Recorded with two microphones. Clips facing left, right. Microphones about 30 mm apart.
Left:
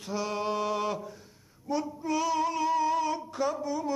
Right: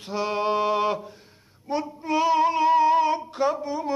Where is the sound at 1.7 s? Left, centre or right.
Right.